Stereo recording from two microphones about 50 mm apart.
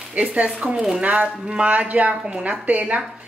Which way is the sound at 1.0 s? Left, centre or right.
Right.